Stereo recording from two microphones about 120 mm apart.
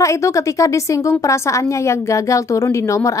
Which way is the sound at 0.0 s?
25° left (ahead or behind).